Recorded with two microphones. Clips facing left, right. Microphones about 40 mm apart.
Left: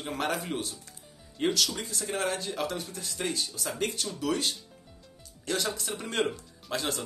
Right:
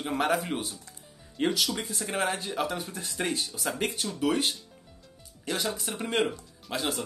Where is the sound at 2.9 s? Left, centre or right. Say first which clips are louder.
Right 2 dB; right.